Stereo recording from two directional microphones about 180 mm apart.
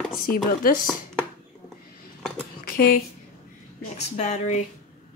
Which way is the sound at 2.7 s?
55° left (ahead or behind).